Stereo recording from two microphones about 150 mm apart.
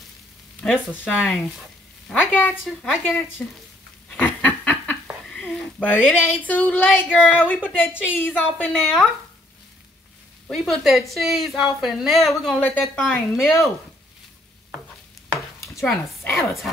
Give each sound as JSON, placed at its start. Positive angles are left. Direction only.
{"t": 0.6, "sound": "a woman's voice", "side_deg": 5}
{"t": 2.6, "sound": "a woman's voice", "side_deg": 0}
{"t": 4.1, "sound": "a sound", "side_deg": 10}
{"t": 5.3, "sound": "a woman's voice", "side_deg": 5}
{"t": 10.5, "sound": "a woman's voice", "side_deg": 0}
{"t": 15.3, "sound": "chopping", "side_deg": 20}
{"t": 15.9, "sound": "speech", "side_deg": 15}